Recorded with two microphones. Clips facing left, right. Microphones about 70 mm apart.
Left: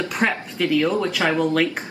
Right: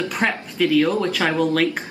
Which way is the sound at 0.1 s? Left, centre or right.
Centre.